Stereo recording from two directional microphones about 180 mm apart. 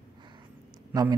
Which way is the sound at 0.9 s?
20° right (ahead or behind).